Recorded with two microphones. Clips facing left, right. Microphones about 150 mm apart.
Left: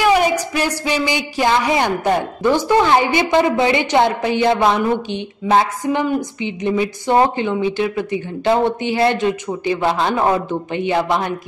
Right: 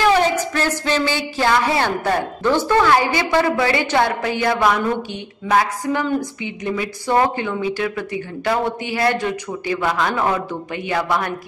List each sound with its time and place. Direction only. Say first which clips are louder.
0.0 s a woman's voice: left 1 dB; 15° left (ahead or behind)